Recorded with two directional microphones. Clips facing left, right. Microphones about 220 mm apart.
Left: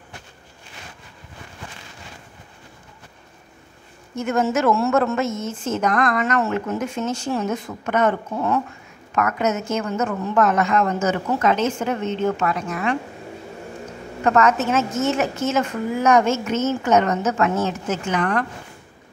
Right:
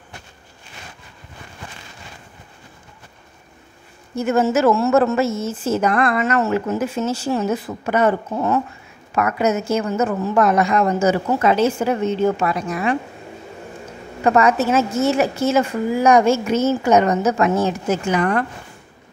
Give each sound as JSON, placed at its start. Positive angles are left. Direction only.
{"t": 4.1, "sound": "a woman's voice", "side_deg": -5}
{"t": 14.2, "sound": "a woman's voice", "side_deg": -10}